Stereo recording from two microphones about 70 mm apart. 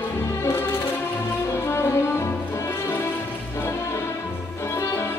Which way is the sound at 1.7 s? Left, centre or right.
Left.